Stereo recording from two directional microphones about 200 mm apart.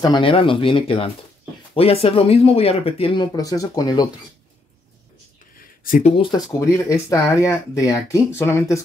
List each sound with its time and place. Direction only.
0.0 s speech: 25° left (ahead or behind)
5.9 s speech: 40° left (ahead or behind)
6.1 s speech: 25° left (ahead or behind)